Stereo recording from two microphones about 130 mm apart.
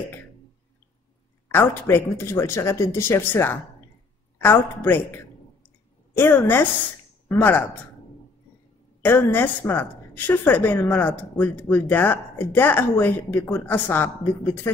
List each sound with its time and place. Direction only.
1.5 s a woman's voice: 15° left (ahead or behind)
9.0 s a woman's voice: 15° left (ahead or behind)